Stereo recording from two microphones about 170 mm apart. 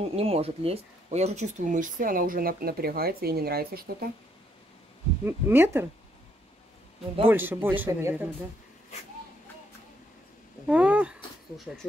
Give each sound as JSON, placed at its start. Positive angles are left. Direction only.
{"t": 0.0, "sound": "speech", "side_deg": -35}
{"t": 5.2, "sound": "a man's voice", "side_deg": -15}
{"t": 7.2, "sound": "a man's voice", "side_deg": -10}
{"t": 10.7, "sound": "a man's voice", "side_deg": -5}